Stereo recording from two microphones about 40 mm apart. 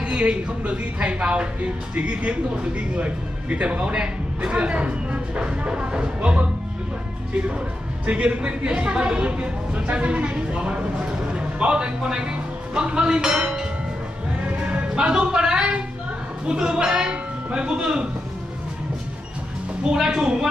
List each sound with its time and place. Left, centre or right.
0.0 s a woman's voice: right
8.1 s a woman's voice: right; by 13.7 s centre
14.8 s a woman's voice: right
19.8 s a woman's voice: centre